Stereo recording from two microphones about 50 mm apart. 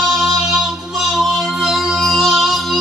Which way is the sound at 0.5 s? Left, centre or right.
Centre.